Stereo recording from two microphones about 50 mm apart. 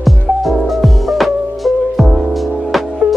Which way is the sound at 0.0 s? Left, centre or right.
Centre.